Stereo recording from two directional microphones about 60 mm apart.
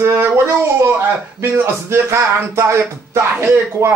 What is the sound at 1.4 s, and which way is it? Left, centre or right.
Speech, right.